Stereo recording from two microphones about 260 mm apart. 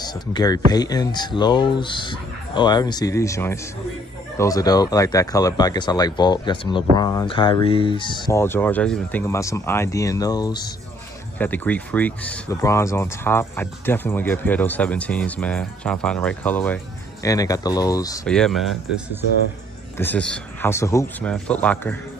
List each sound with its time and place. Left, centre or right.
0.0 s speech: centre
18.2 s speech: centre